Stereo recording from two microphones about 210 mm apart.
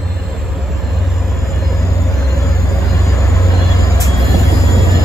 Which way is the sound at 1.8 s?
15° left (ahead or behind).